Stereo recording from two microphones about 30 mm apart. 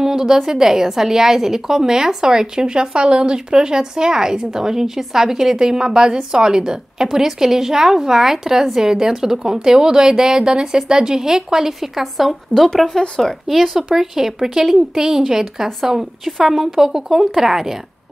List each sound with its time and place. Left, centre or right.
0.0 s a woman's voice: centre
13.5 s speech: centre
16.3 s a woman's voice: centre
16.5 s speech: centre